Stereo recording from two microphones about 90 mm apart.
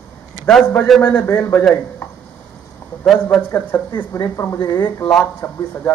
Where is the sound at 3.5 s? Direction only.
25° left (ahead or behind).